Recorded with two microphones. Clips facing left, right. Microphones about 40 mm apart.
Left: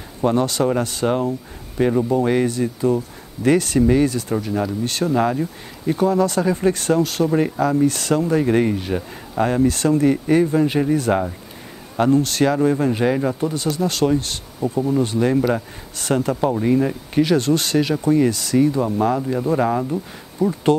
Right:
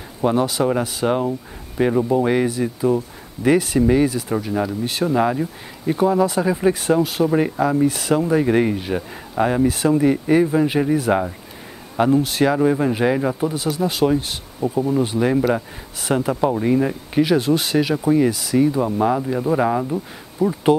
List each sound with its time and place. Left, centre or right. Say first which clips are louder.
0.2 s speech: even; centre